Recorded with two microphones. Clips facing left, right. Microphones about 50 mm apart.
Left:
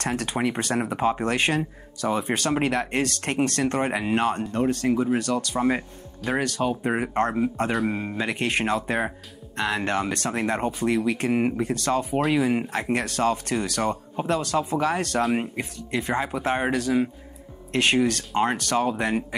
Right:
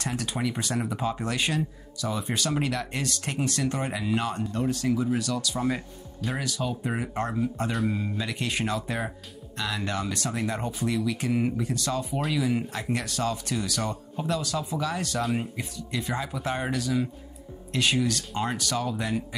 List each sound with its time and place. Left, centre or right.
0.0 s speech: left
6.3 s speech: left